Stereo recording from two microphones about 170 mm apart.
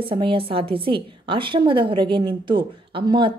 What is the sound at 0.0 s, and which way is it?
A woman's voice, 30° right (ahead or behind).